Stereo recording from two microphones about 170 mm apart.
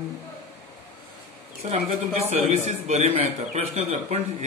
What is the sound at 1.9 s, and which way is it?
A man's voice, 40° right (ahead or behind).